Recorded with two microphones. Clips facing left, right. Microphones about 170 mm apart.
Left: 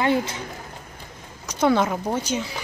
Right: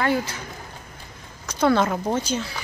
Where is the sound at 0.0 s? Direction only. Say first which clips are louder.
Left 1 dB; 25° left (ahead or behind).